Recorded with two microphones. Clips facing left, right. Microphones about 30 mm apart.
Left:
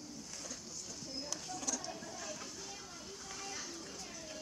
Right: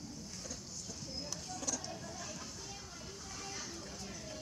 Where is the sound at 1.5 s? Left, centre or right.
Centre.